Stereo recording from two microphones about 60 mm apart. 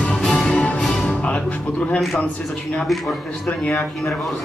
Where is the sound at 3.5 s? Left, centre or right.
Left.